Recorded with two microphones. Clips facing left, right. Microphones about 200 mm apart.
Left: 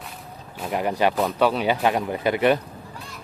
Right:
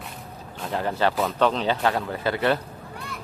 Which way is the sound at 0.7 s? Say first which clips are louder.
Left 2 dB; 15° left (ahead or behind).